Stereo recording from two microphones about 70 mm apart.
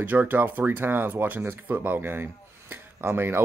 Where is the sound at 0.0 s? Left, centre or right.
Right.